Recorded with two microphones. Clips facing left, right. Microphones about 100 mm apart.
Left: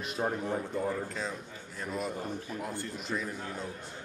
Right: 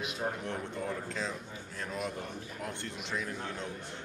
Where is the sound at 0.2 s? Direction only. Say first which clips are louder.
Left 4 dB; 60° left (ahead or behind).